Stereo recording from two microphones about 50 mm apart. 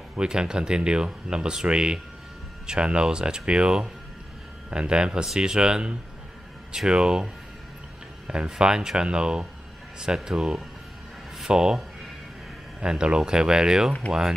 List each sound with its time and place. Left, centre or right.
0.1 s speech: centre
8.3 s speech: centre
12.8 s speech: centre